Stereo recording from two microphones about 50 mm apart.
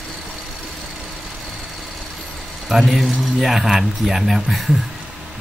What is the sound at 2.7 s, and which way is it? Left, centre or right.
Speech, centre.